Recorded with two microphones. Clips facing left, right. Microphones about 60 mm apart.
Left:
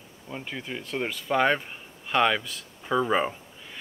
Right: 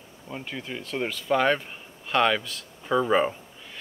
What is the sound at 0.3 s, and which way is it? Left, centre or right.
Speech, centre.